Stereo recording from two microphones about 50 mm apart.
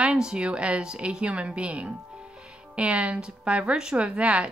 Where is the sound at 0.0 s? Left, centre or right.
Centre.